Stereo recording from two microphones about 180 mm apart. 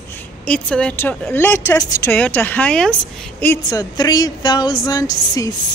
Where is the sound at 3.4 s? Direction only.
20° left (ahead or behind).